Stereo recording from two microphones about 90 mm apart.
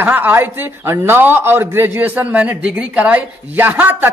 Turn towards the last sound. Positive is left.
turn(degrees=-20)  # may be behind; listen again after turning